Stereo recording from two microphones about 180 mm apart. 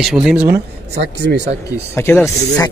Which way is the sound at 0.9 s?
70° right (ahead or behind).